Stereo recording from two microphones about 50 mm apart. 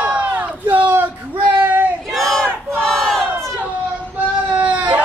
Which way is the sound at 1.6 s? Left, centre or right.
Right.